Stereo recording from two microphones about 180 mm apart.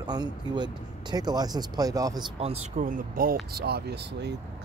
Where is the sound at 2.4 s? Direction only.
40° right (ahead or behind); by 4.3 s 65° right (ahead or behind).